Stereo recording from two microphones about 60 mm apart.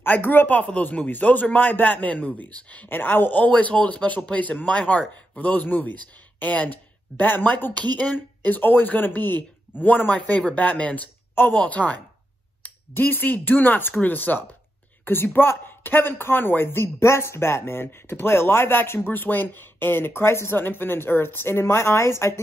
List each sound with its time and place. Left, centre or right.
0.0 s speech: left